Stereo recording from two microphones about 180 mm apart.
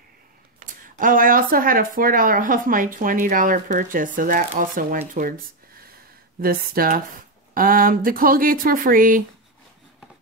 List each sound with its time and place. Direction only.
0.7 s speech: 50° right (ahead or behind)
6.4 s speech: 55° right (ahead or behind)